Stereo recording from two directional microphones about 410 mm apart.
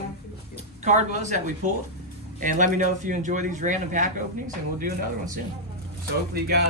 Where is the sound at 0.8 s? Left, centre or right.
Centre.